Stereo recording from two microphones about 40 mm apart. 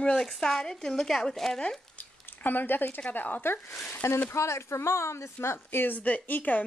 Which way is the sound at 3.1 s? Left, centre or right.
Left.